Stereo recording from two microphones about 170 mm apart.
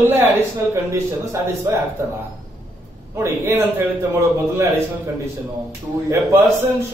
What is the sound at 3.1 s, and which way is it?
Speech, 15° right (ahead or behind).